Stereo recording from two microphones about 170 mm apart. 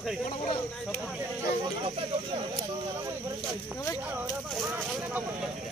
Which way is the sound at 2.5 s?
20° right (ahead or behind).